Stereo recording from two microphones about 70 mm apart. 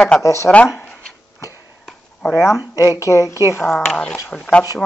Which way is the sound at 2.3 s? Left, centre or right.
Left.